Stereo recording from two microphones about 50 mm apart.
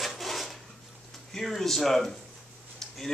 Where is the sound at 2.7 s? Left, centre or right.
Centre.